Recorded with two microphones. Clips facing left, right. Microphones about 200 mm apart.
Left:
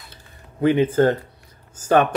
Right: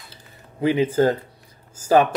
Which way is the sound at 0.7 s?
10° right (ahead or behind).